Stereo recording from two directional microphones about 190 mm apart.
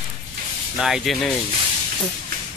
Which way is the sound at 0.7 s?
Centre (ahead or behind).